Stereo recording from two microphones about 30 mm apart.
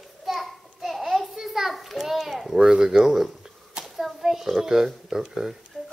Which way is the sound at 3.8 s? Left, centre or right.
Centre.